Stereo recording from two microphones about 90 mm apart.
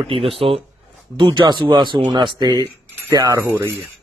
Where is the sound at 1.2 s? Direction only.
55° right (ahead or behind).